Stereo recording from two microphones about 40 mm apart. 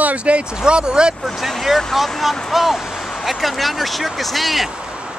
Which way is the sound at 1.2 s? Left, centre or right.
Centre.